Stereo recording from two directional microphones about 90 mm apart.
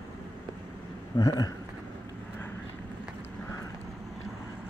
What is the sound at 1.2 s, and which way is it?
Speech, 45° left (ahead or behind).